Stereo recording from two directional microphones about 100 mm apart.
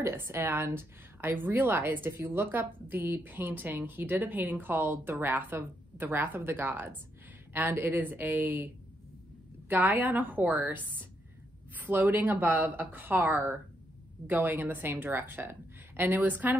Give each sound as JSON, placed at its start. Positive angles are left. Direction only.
{"t": 0.0, "sound": "speech", "side_deg": -25}
{"t": 9.7, "sound": "speech", "side_deg": -20}